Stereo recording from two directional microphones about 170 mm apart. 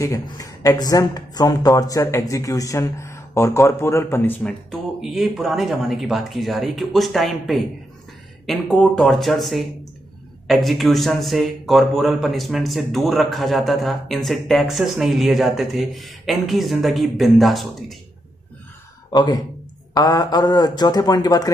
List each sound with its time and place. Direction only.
0.0 s speech: 20° left (ahead or behind); by 17.9 s centre (ahead or behind)
19.1 s speech: 25° left (ahead or behind)